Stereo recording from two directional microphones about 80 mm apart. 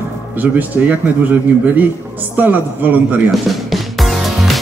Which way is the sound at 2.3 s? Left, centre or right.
Right.